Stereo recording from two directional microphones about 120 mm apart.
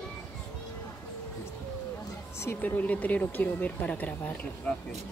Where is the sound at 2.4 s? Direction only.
15° left (ahead or behind).